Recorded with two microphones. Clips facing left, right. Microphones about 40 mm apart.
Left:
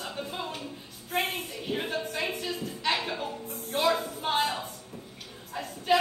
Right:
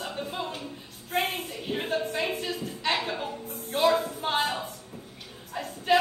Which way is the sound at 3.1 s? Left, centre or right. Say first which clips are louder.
Right 1 dB; centre.